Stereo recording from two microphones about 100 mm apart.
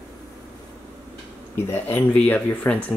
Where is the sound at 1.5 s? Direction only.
20° left (ahead or behind).